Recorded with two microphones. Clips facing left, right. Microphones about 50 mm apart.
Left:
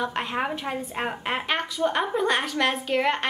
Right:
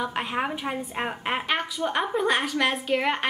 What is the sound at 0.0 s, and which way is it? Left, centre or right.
Speech, centre.